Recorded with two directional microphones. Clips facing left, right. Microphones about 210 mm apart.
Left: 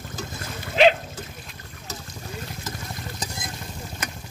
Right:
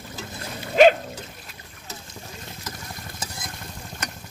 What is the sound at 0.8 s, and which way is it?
Dog, 45° right (ahead or behind).